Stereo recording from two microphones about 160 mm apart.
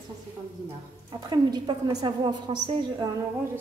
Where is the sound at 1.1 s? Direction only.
25° right (ahead or behind).